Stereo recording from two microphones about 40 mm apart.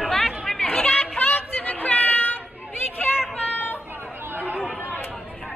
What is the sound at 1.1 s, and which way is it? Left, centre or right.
Music, left.